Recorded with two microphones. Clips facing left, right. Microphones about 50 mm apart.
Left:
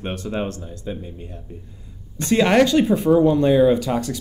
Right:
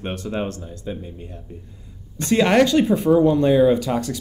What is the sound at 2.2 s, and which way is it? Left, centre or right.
Speech, centre.